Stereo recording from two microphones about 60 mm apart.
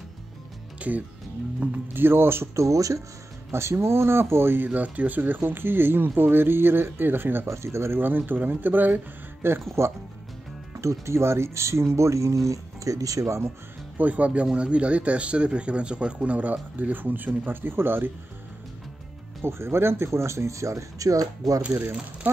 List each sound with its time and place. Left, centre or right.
0.7 s a man's voice: right
2.0 s speech: right
3.5 s speech: right
4.6 s speech: right
7.4 s speech: right
8.0 s speech: right
13.9 s a man's voice: right
19.4 s speech: right
21.5 s a man's voice: right